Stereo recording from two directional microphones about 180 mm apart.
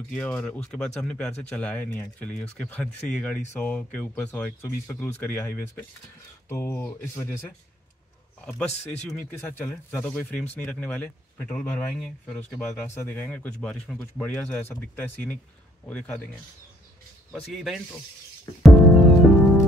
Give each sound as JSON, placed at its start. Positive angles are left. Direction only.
{"t": 0.1, "sound": "speech", "side_deg": 5}
{"t": 17.3, "sound": "speech", "side_deg": 0}
{"t": 18.5, "sound": "music", "side_deg": 20}